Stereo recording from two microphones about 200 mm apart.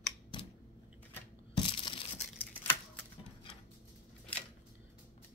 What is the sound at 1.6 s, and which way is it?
Crushing, 25° left (ahead or behind).